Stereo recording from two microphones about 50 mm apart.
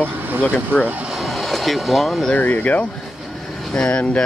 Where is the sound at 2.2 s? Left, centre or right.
Left.